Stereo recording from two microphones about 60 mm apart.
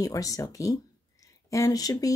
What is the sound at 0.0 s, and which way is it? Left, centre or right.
Speech, left.